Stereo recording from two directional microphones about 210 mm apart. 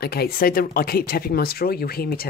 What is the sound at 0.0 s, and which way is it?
Speech, 45° left (ahead or behind).